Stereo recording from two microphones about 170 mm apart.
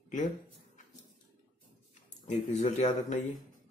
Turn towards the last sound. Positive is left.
turn(degrees=40)  # may be behind; listen again after turning